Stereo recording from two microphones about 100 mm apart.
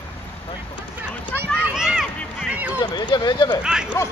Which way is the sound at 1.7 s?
5° right (ahead or behind).